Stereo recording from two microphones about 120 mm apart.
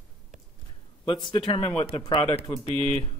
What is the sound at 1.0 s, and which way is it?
Speech, 40° left (ahead or behind).